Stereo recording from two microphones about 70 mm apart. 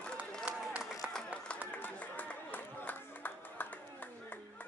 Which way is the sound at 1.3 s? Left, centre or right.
Centre.